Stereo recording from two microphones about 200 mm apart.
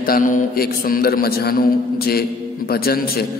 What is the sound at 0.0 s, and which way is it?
Mantra, 45° left (ahead or behind).